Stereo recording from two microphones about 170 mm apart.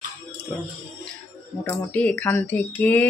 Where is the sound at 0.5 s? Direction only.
5° left (ahead or behind).